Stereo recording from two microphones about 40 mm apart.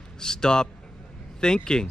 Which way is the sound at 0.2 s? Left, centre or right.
Centre.